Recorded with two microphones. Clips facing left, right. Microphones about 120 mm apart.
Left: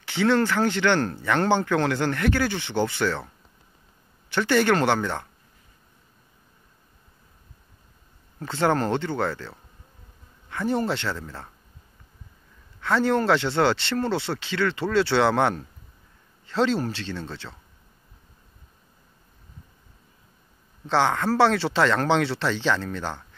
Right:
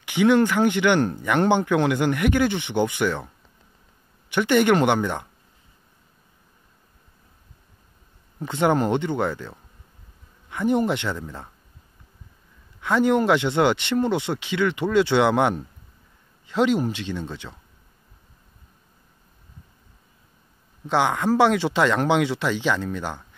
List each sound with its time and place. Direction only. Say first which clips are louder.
0.0 s speech: right 4 dB; 15° right (ahead or behind)
4.3 s speech: right 2 dB; 20° right (ahead or behind)
8.4 s speech: right 2 dB; 15° right (ahead or behind)
12.8 s speech: right 2 dB; 15° right (ahead or behind)
20.8 s speech: right 1 dB; 15° right (ahead or behind)